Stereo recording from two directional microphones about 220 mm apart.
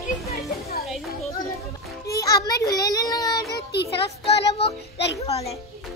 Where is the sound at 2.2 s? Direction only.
15° left (ahead or behind).